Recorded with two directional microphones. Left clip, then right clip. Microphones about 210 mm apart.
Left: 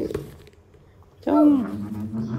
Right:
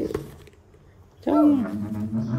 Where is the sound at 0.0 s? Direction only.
Centre (ahead or behind).